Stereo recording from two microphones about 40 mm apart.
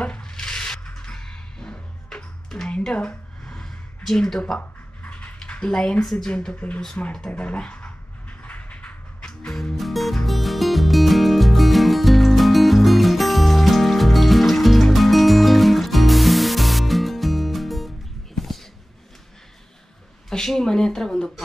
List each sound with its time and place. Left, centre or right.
0.2 s a sound: centre
0.8 s music: centre
2.8 s speech: left
3.4 s a sound: centre
4.0 s speech: centre
4.6 s a sound: left
5.5 s speech: left
7.6 s dog: left
8.3 s a sound: left
9.2 s music: centre
9.8 s music: centre
20.2 s speech: centre